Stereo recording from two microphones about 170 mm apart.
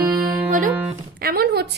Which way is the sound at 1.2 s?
65° right (ahead or behind).